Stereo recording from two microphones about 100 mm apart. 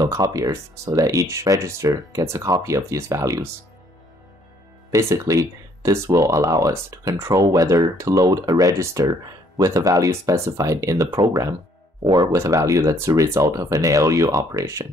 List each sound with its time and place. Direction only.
0.0 s speech: 40° right (ahead or behind)
4.9 s speech: 30° right (ahead or behind)
12.4 s speech: 35° right (ahead or behind)